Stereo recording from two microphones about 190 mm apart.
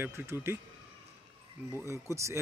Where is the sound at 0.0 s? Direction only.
15° right (ahead or behind).